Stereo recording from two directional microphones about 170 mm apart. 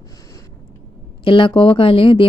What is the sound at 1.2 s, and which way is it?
Speech, 30° left (ahead or behind).